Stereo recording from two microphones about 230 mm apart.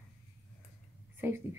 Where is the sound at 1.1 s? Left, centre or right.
Centre.